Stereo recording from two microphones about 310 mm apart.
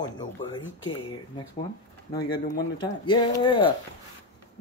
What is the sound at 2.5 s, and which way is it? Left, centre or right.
Speech, centre.